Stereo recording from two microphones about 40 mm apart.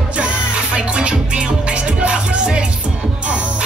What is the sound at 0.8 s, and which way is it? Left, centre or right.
Music, right.